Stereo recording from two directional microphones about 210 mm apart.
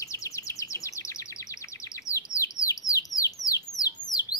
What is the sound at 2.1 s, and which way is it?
Bird, 15° left (ahead or behind).